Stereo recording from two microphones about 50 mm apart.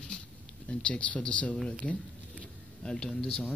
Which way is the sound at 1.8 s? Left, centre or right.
Left.